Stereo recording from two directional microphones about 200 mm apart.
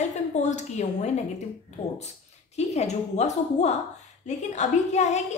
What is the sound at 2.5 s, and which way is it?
A woman's voice, 35° left (ahead or behind).